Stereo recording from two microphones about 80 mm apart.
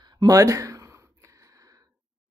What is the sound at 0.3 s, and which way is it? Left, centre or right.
Speech, right.